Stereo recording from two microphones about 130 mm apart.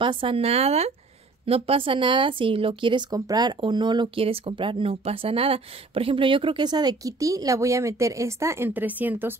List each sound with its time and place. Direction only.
0.0 s speech: 40° right (ahead or behind); by 9.3 s 15° right (ahead or behind)